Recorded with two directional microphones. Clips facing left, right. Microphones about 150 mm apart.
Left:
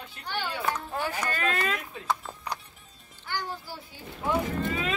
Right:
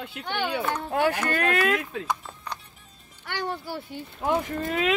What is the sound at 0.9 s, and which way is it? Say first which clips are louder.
Speech: right 7 dB; 70° right (ahead or behind).